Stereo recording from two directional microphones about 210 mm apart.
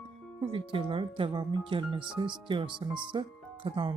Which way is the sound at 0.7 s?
25° right (ahead or behind).